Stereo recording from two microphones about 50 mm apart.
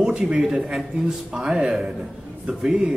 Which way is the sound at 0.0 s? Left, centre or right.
Centre.